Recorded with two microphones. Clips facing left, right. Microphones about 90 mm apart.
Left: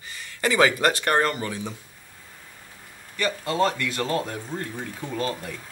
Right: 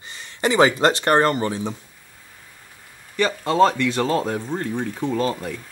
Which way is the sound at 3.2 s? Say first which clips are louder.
Right 6 dB; 25° right (ahead or behind).